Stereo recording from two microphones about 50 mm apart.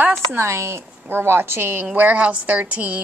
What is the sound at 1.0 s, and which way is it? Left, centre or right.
Speech, right.